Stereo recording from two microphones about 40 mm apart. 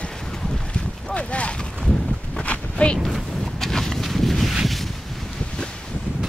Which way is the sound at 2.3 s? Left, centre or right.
Left.